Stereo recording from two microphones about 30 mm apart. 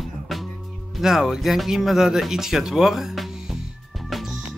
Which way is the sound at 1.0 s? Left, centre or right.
Centre.